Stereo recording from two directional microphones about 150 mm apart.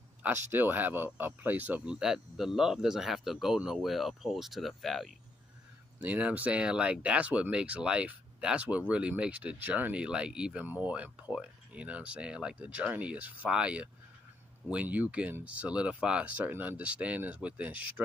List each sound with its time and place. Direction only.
0.2 s speech: 15° right (ahead or behind)